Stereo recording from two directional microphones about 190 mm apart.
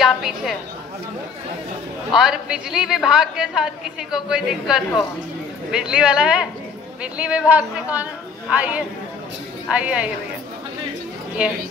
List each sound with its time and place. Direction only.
0.0 s a woman's voice: centre (ahead or behind)
2.1 s a woman's voice: 5° right (ahead or behind)